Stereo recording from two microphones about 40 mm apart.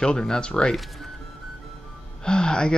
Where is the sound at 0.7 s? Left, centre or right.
Centre.